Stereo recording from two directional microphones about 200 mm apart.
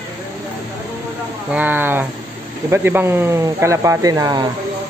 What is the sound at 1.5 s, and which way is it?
Speech, 10° right (ahead or behind).